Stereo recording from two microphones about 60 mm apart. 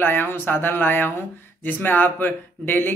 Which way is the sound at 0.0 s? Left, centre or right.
Left.